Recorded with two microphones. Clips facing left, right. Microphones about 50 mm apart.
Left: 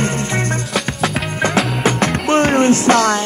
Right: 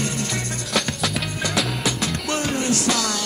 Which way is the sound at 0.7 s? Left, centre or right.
Centre.